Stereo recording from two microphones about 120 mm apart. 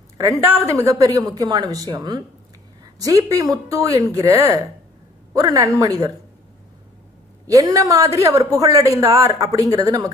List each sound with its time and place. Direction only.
0.4 s speech: 15° right (ahead or behind)
0.7 s a woman's voice: 25° right (ahead or behind)
7.4 s speech: 30° right (ahead or behind)